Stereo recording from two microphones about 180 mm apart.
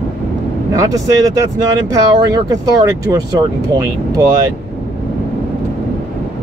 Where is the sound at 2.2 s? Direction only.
20° right (ahead or behind).